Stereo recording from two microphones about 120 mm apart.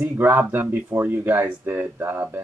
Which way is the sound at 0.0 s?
20° right (ahead or behind).